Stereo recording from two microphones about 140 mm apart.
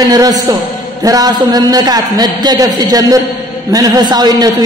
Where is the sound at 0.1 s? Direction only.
25° right (ahead or behind).